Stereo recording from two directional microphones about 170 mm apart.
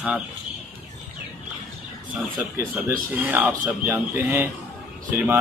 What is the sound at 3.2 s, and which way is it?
Speech, 10° right (ahead or behind).